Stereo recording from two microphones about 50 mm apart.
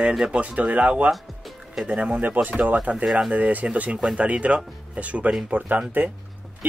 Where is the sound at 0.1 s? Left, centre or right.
Centre.